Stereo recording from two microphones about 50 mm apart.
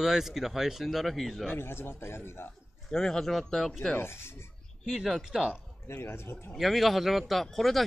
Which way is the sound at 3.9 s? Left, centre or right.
Left.